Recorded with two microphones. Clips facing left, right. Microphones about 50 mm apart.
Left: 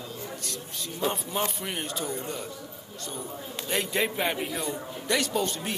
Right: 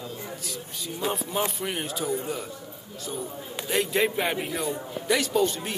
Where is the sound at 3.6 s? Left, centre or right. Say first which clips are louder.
Right 3 dB; centre.